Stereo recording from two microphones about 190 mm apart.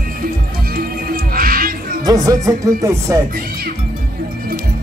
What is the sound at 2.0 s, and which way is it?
Speech, 20° right (ahead or behind).